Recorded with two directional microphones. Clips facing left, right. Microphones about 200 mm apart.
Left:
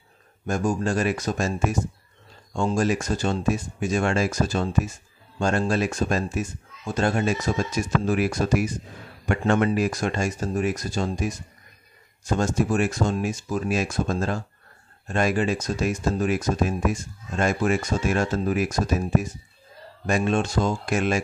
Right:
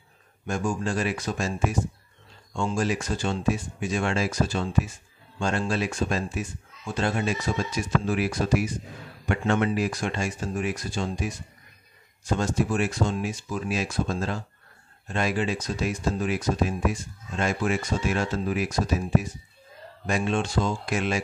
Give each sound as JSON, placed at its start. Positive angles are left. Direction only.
{"t": 0.5, "sound": "speech", "side_deg": 40}
{"t": 12.4, "sound": "speech", "side_deg": 45}